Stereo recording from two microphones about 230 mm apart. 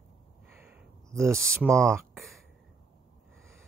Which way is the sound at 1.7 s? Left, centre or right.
Centre.